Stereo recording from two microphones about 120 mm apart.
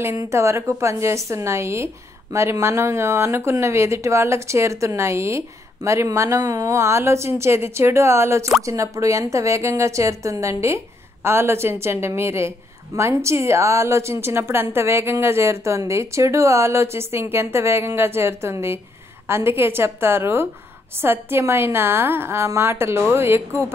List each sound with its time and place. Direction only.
0.0 s a woman's voice: 25° right (ahead or behind)